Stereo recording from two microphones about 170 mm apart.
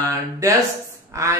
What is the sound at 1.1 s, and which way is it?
Speech, 15° right (ahead or behind).